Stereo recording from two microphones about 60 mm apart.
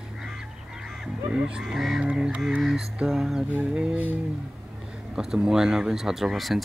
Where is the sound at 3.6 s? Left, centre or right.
Centre.